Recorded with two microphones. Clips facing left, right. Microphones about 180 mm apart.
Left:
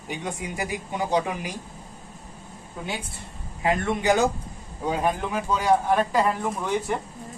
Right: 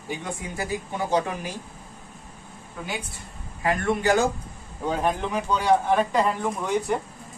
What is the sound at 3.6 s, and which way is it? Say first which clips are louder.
A man's voice: even; 20° left (ahead or behind).